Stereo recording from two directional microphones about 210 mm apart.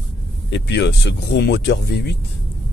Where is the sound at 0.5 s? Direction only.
55° left (ahead or behind).